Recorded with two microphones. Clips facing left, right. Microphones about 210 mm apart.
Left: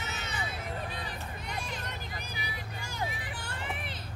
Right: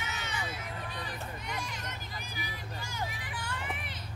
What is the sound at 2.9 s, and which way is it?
Vehicle, 35° left (ahead or behind).